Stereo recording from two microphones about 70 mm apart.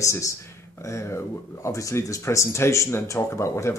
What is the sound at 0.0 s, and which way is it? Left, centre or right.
Speech, left.